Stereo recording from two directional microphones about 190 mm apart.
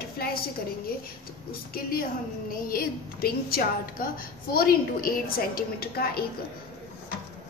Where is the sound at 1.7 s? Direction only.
50° left (ahead or behind).